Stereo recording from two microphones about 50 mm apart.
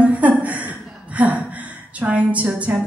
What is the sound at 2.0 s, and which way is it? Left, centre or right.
Speech, right.